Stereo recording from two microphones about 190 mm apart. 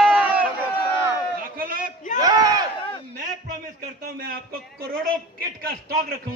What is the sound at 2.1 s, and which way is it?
Speech, 20° right (ahead or behind).